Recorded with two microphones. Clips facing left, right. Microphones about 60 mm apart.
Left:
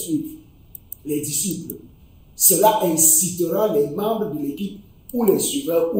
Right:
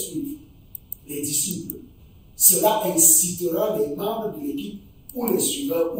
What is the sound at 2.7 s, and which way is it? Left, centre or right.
Speech, centre.